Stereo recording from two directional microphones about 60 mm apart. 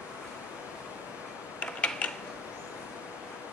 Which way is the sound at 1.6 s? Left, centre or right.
Left.